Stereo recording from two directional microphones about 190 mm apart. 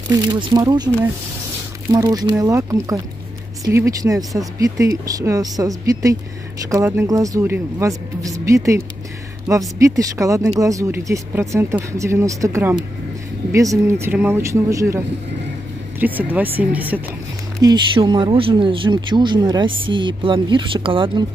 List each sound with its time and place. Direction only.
0.3 s speech: 25° right (ahead or behind)
1.9 s speech: 20° right (ahead or behind)
4.2 s speech: centre (ahead or behind)
4.6 s speech: 15° right (ahead or behind)
17.6 s speech: 20° right (ahead or behind)